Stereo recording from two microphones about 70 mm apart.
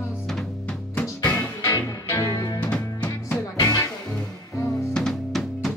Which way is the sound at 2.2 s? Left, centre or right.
Left.